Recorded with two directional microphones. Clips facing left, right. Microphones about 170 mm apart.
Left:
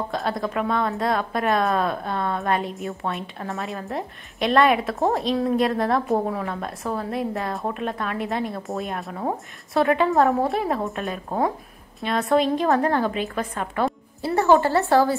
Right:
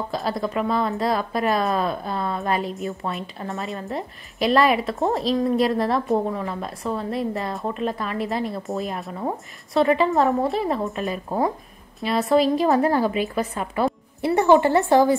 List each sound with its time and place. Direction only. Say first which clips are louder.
0.1 s a woman's voice: right 1 dB; centre (ahead or behind)
14.2 s a woman's voice: right 2 dB; 20° right (ahead or behind)